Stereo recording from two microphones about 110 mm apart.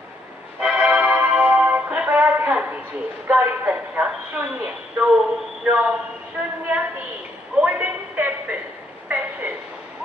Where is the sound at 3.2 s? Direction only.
15° right (ahead or behind).